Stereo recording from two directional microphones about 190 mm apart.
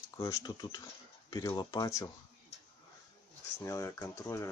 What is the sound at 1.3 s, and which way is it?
Speech, 20° left (ahead or behind).